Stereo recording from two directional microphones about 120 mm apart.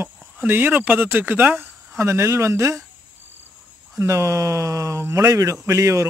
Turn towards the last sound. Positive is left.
turn(degrees=-25)  # may be behind; listen again after turning